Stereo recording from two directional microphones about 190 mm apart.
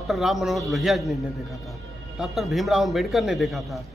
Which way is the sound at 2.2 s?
Centre (ahead or behind).